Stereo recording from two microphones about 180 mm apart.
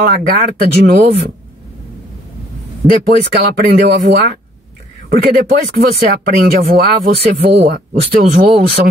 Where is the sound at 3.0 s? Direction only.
65° right (ahead or behind).